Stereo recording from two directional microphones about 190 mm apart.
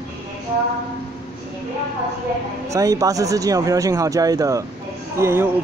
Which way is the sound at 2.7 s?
20° right (ahead or behind).